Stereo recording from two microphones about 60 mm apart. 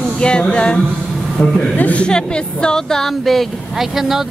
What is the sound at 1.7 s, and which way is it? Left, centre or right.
Speech, left.